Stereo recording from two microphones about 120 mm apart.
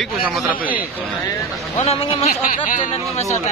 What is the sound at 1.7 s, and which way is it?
Speech, 55° left (ahead or behind).